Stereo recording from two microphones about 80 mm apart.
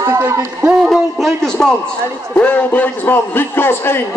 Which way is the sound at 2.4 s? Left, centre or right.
Left.